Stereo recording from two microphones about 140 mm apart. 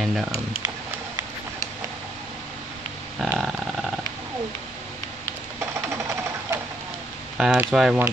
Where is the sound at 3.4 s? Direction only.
5° right (ahead or behind).